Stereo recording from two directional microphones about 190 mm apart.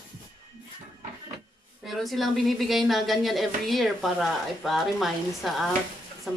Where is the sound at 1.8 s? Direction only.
Centre (ahead or behind).